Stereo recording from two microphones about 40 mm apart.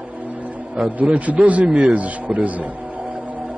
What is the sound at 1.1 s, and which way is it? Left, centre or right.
Speech, right.